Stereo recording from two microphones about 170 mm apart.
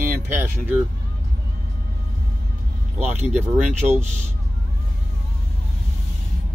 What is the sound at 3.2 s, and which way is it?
Speech, 10° right (ahead or behind).